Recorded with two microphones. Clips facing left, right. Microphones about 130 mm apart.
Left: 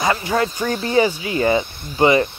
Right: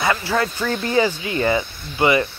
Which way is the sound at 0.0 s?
20° left (ahead or behind).